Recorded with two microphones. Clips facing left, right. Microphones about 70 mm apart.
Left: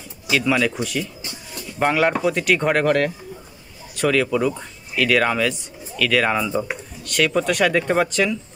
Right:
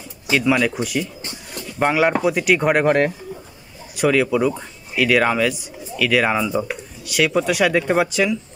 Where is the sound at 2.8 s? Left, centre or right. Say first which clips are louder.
Right 2 dB; right.